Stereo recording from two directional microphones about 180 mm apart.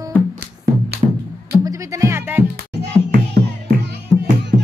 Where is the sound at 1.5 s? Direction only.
20° right (ahead or behind).